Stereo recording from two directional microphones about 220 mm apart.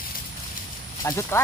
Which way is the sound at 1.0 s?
10° left (ahead or behind).